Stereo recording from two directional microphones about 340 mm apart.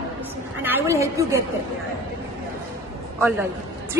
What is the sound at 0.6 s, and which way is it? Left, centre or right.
Speech, centre.